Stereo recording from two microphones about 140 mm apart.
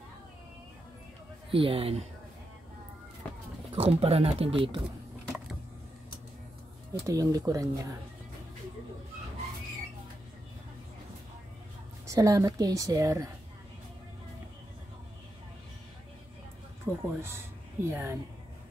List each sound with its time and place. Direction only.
1.5 s speech: 40° right (ahead or behind)
3.7 s speech: 40° right (ahead or behind)
4.8 s a sound: centre (ahead or behind)
6.9 s a woman's voice: 25° right (ahead or behind)
12.1 s a woman's voice: 25° right (ahead or behind)
16.8 s speech: 15° right (ahead or behind)